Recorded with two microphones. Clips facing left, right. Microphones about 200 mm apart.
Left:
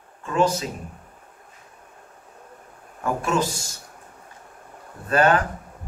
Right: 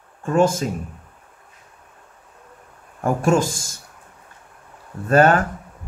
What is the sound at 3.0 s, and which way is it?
Speech, 50° right (ahead or behind).